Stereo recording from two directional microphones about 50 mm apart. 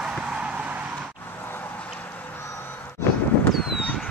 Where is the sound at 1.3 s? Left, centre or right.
Left.